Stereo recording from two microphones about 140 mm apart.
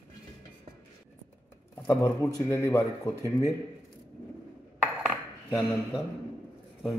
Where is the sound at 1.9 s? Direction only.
20° left (ahead or behind).